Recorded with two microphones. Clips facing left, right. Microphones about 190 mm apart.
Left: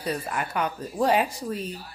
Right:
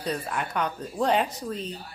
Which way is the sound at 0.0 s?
5° left (ahead or behind).